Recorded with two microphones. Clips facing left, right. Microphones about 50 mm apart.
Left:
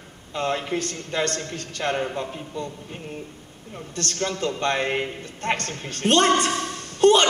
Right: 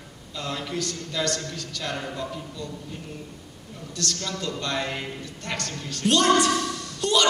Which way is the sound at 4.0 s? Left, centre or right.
Left.